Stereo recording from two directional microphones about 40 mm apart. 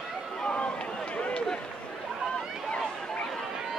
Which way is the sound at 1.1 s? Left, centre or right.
Left.